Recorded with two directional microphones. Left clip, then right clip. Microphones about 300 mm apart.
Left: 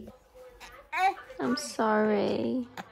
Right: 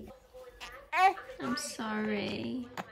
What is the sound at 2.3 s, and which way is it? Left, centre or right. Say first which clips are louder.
Speech: left 8 dB; centre.